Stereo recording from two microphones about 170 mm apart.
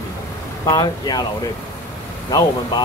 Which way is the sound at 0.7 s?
25° left (ahead or behind).